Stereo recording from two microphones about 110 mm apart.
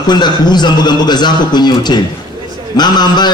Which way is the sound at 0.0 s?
40° left (ahead or behind).